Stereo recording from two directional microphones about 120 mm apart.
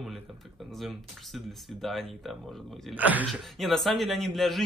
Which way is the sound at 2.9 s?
15° right (ahead or behind).